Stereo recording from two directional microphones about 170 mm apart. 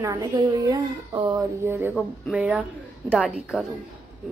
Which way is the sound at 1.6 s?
10° right (ahead or behind).